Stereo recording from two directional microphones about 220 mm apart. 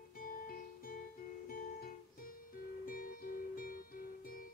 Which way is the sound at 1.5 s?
40° left (ahead or behind).